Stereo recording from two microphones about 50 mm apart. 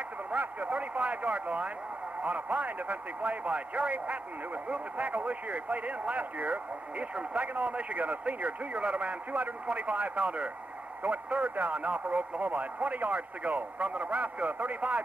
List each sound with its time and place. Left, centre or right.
0.3 s a man's voice: right